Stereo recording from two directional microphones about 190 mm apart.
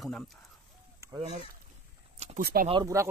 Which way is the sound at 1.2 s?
35° right (ahead or behind).